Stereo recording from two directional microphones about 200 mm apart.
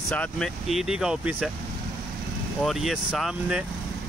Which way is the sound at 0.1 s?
5° left (ahead or behind).